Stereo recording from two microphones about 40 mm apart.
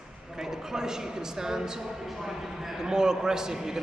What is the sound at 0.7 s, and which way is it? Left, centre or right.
A man's voice, centre.